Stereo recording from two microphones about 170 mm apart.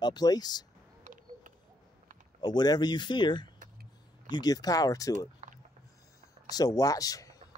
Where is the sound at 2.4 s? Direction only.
25° left (ahead or behind).